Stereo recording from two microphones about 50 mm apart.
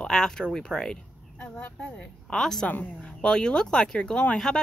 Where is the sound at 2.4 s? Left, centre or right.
Centre.